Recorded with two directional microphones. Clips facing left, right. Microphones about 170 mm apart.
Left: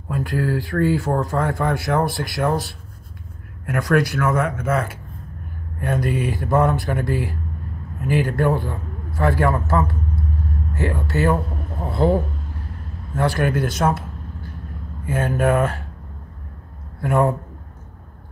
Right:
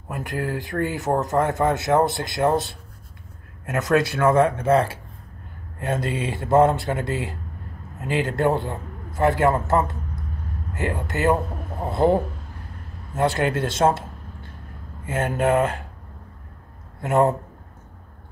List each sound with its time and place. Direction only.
0.1 s a man's voice: 20° right (ahead or behind)
17.0 s speech: 25° right (ahead or behind)